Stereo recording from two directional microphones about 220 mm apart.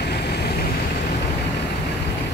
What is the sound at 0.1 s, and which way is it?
Vehicle, 50° left (ahead or behind).